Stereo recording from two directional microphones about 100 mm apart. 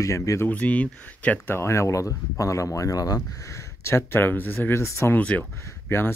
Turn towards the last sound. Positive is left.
turn(degrees=25)  # may be behind; listen again after turning